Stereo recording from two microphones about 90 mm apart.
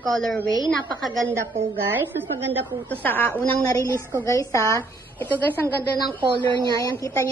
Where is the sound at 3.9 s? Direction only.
25° right (ahead or behind).